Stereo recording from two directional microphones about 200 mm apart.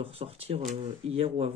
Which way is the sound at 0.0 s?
30° right (ahead or behind).